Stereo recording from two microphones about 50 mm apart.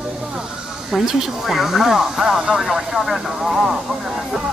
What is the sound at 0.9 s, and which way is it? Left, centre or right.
Speech, centre.